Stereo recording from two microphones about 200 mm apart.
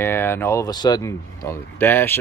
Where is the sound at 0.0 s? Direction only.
10° left (ahead or behind).